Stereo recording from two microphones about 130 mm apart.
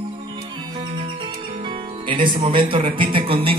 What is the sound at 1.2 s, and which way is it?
Music, 40° right (ahead or behind).